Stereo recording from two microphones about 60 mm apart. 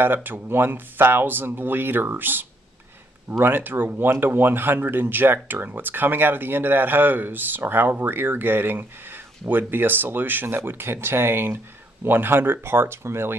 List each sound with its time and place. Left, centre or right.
0.0 s speech: right